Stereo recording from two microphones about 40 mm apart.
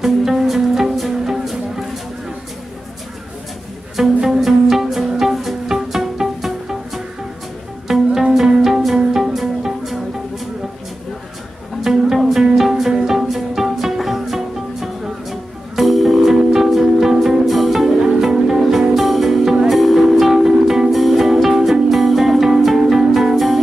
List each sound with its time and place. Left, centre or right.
0.0 s music: centre
4.3 s music: centre
11.8 s music: centre
17.9 s music: centre